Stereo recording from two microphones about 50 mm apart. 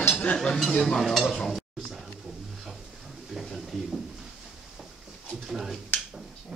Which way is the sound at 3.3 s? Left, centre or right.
Centre.